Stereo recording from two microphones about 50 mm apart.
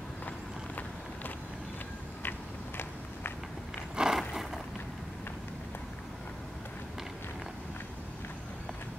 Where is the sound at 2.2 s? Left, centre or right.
Left.